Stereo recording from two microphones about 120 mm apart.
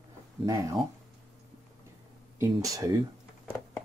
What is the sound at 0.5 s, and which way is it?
Speech, 25° right (ahead or behind).